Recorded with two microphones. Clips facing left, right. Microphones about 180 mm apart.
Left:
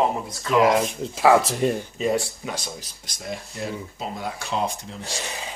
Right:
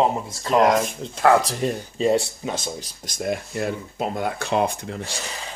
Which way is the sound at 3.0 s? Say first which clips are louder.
Right 8 dB; 50° right (ahead or behind).